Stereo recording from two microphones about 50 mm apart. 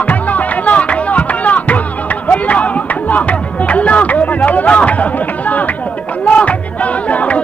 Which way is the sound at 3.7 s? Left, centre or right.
Left.